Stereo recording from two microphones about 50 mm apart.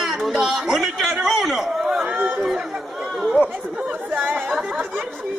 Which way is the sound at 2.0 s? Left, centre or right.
Right.